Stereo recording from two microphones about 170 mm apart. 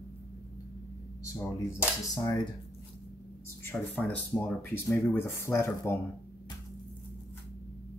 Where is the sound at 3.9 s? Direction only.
5° left (ahead or behind).